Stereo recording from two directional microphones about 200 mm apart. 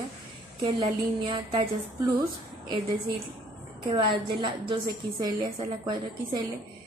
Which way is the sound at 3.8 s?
25° right (ahead or behind).